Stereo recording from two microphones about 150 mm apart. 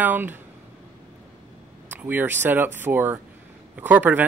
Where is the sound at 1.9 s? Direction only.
10° right (ahead or behind).